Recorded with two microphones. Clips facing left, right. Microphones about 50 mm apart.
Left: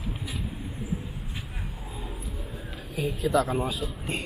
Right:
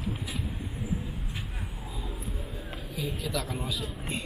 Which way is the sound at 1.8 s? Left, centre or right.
Left.